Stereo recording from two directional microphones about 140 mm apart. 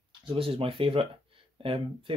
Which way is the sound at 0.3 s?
40° right (ahead or behind).